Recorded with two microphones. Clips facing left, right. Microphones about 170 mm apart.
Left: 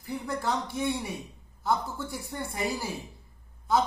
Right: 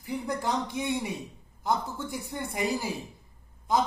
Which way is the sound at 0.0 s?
15° right (ahead or behind).